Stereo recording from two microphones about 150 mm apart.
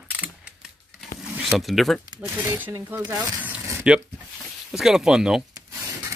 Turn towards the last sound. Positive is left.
turn(degrees=-20)  # may be behind; listen again after turning